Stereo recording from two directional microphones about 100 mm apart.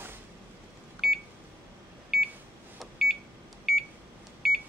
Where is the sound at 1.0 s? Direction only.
Centre (ahead or behind).